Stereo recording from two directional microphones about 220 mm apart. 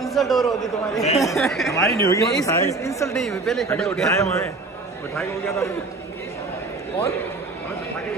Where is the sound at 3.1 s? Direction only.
Centre (ahead or behind).